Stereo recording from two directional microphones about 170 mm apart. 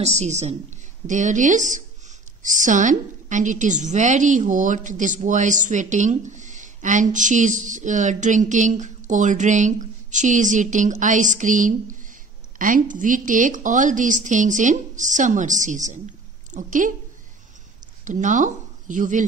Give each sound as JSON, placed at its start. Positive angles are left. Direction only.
{"t": 0.2, "sound": "a woman's voice", "side_deg": -40}
{"t": 18.0, "sound": "speech", "side_deg": -50}